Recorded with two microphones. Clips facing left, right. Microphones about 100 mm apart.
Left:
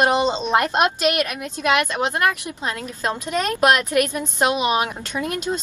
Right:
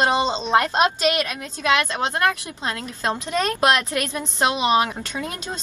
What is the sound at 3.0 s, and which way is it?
Speech, 30° right (ahead or behind).